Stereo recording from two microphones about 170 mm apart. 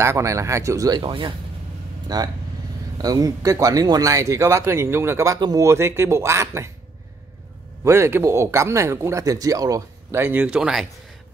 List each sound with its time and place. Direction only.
0.0 s speech: 15° right (ahead or behind)
7.8 s speech: 15° right (ahead or behind)